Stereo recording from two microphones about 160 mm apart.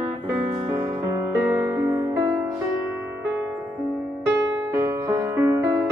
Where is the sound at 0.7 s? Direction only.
20° right (ahead or behind).